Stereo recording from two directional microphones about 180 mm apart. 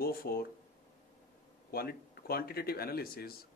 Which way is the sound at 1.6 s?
55° left (ahead or behind).